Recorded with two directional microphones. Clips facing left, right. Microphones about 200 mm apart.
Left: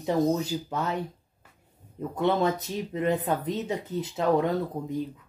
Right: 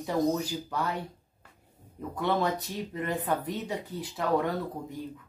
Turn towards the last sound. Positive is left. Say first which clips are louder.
# left 4 dB
turn(degrees=20)  # may be behind; listen again after turning